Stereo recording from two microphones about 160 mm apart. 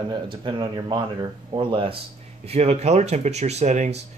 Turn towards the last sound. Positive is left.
turn(degrees=-45)  # may be behind; listen again after turning